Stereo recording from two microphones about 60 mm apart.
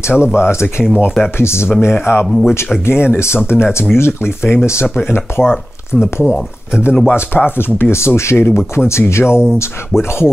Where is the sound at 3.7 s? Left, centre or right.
Left.